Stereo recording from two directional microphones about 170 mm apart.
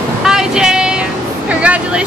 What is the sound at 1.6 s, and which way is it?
Speech, 5° right (ahead or behind).